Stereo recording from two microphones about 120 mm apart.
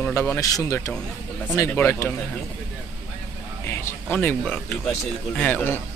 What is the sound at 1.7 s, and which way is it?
Speech, 20° left (ahead or behind).